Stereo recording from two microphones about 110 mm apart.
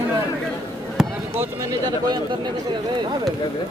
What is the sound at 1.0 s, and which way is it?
Basketball bounce, 5° right (ahead or behind).